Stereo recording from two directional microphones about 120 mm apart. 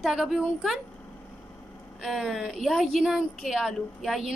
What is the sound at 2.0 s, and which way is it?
A woman's voice, 5° right (ahead or behind).